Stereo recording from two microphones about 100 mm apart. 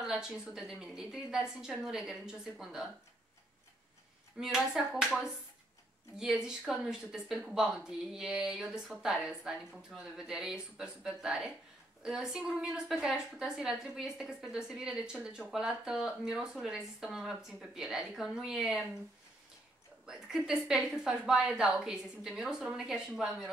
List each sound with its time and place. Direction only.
0.0 s a woman's voice: 5° right (ahead or behind)
4.4 s a woman's voice: 5° right (ahead or behind)
20.1 s a woman's voice: 5° right (ahead or behind)